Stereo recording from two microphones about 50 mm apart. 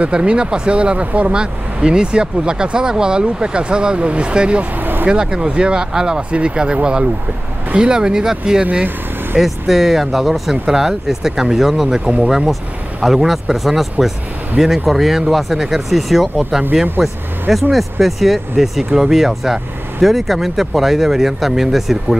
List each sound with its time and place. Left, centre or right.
0.0 s speech: right
4.7 s vehicle: right
5.0 s speech: centre
12.0 s speech: right
12.3 s speech: centre